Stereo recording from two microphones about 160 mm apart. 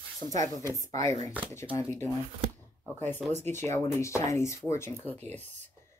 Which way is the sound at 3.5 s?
15° left (ahead or behind).